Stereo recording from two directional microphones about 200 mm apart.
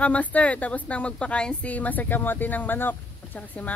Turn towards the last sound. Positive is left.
turn(degrees=10)  # may be behind; listen again after turning